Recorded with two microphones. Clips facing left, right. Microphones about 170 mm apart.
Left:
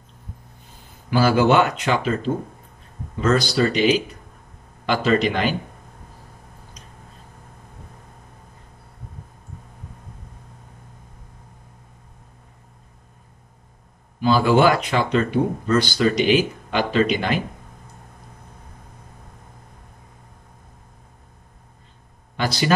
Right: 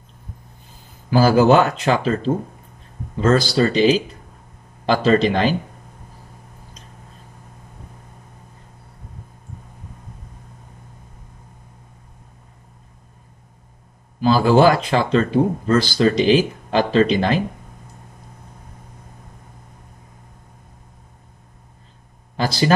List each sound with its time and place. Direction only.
1.3 s speech: 35° right (ahead or behind)
14.2 s speech: 35° right (ahead or behind)